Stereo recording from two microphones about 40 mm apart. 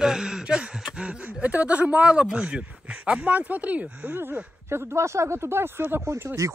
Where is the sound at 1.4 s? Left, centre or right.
Right.